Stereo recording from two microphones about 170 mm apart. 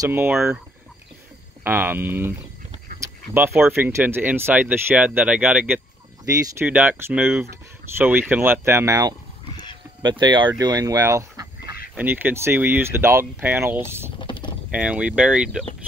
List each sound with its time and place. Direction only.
0.0 s speech: 10° right (ahead or behind)
1.6 s speech: 10° right (ahead or behind)
6.2 s speech: 20° right (ahead or behind)
14.1 s a sound: 30° left (ahead or behind)
14.7 s speech: 5° right (ahead or behind)